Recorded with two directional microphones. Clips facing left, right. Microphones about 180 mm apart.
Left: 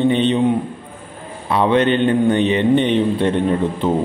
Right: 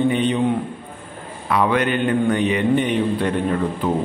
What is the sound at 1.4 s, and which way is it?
A man's voice, 25° left (ahead or behind).